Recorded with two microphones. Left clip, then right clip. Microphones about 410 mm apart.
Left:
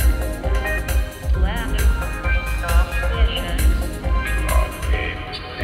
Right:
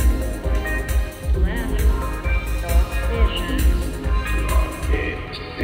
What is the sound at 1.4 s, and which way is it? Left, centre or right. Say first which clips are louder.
Music: left 2 dB; left.